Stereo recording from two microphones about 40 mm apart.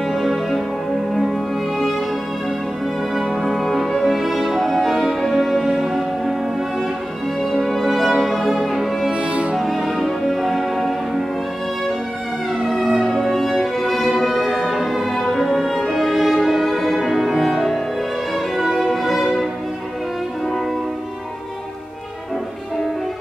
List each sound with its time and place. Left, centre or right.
0.0 s music: centre
3.2 s music: centre
7.5 s music: centre
9.1 s music: right
9.6 s music: centre
12.7 s music: centre
18.3 s violin: centre